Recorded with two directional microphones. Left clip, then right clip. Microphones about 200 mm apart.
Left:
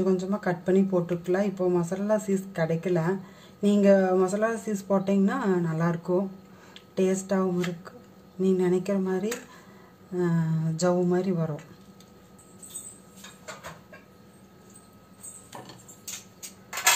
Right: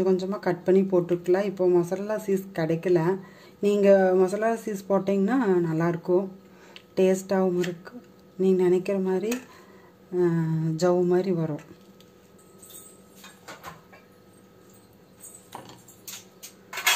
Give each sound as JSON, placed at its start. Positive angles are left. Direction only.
{"t": 0.0, "sound": "speech", "side_deg": -25}
{"t": 6.7, "sound": "a sound", "side_deg": -25}
{"t": 8.4, "sound": "speech", "side_deg": -25}